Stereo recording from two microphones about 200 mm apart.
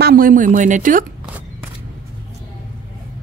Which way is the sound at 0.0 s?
45° right (ahead or behind).